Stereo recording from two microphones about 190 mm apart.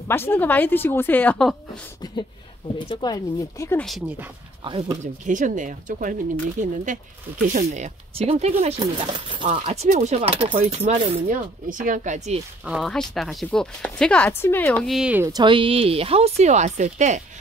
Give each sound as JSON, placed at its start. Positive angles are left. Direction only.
{"t": 0.1, "sound": "speech", "side_deg": 10}
{"t": 2.9, "sound": "speech", "side_deg": 20}
{"t": 4.6, "sound": "speech", "side_deg": -25}
{"t": 5.0, "sound": "speech", "side_deg": -40}
{"t": 11.2, "sound": "speech", "side_deg": -45}
{"t": 12.6, "sound": "speech", "side_deg": 0}
{"t": 15.2, "sound": "speech", "side_deg": -20}